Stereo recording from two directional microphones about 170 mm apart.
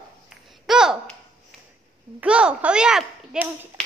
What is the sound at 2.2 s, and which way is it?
A child's voice, 5° right (ahead or behind).